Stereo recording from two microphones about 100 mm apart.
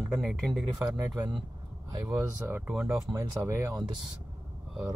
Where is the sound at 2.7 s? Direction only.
10° right (ahead or behind).